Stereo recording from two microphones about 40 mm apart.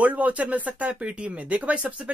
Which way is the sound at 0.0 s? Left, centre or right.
Right.